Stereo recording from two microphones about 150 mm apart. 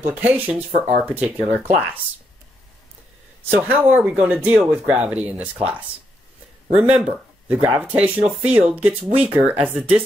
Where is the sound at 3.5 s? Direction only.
15° right (ahead or behind).